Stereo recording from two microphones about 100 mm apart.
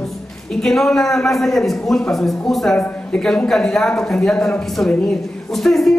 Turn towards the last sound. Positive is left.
turn(degrees=0)  # may be behind; listen again after turning